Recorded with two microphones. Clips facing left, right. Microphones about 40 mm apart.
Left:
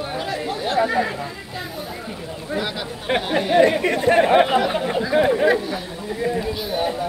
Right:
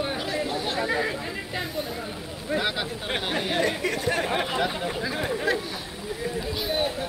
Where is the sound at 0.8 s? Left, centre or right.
Centre.